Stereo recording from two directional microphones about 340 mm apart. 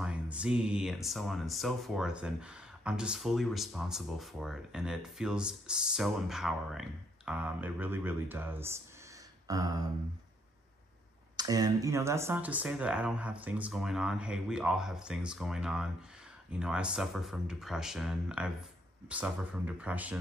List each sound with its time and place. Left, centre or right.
0.0 s speech: centre
9.5 s a sound: centre
11.3 s speech: centre